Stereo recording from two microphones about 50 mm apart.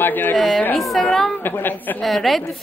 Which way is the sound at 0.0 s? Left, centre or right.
Left.